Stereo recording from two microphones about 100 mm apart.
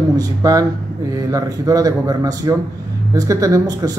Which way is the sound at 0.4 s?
35° right (ahead or behind).